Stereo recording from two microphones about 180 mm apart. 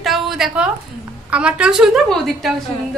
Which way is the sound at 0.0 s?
Centre (ahead or behind).